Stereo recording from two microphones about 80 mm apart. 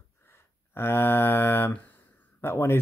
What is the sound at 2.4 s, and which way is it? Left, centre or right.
Speech, left.